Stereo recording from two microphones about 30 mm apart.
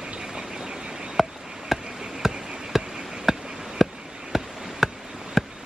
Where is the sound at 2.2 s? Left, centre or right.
Centre.